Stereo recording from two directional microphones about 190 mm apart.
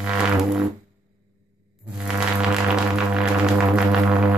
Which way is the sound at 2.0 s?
5° right (ahead or behind).